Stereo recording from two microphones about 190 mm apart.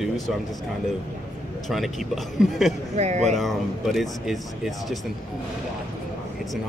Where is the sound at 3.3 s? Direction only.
Centre (ahead or behind).